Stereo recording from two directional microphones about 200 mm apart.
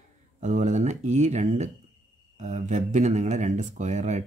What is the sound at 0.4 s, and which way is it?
Speech, 40° right (ahead or behind).